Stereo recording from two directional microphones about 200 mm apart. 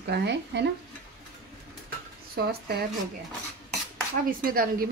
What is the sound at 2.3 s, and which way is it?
Speech, 50° right (ahead or behind).